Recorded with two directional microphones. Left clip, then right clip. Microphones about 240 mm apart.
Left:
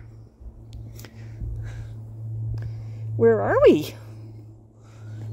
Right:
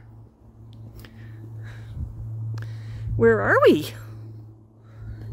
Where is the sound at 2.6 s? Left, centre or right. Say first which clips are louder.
Right 1 dB; centre.